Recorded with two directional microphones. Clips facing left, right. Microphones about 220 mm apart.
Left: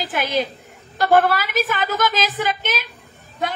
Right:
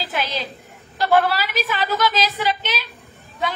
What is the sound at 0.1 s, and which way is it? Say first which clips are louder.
A woman's voice: left 6 dB; 50° left (ahead or behind).